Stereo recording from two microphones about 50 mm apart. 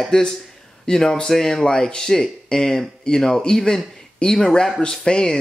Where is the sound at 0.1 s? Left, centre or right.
Centre.